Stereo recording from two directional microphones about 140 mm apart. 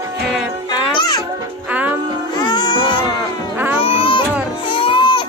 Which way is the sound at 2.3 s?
30° left (ahead or behind).